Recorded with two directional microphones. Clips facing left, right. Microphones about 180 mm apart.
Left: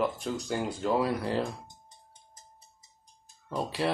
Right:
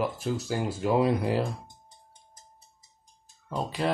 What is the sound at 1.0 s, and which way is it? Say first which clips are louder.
Speech: right 4 dB; 20° right (ahead or behind).